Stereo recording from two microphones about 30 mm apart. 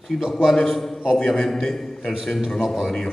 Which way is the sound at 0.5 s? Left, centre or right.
Centre.